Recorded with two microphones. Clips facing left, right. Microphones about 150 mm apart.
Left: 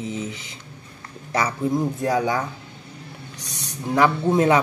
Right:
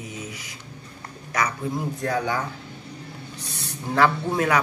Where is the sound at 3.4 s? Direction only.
15° left (ahead or behind).